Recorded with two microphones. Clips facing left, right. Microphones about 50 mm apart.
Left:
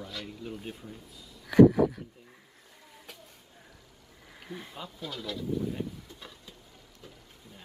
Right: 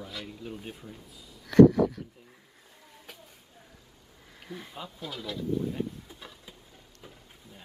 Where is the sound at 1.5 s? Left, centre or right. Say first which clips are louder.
Right 1 dB; centre.